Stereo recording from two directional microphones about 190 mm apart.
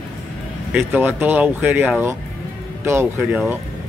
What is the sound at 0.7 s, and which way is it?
A man's voice, 10° right (ahead or behind).